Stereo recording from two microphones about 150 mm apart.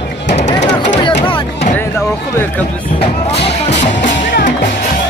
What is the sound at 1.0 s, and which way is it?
Music, 35° left (ahead or behind).